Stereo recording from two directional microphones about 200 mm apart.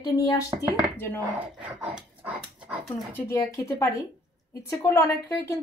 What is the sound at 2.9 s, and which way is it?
Speech, 10° left (ahead or behind).